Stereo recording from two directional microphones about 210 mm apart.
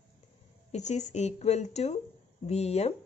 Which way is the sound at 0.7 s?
35° left (ahead or behind).